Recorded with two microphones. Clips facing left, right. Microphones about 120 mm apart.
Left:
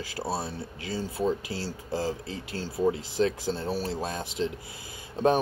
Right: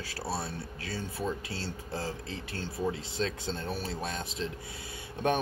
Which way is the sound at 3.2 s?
20° left (ahead or behind).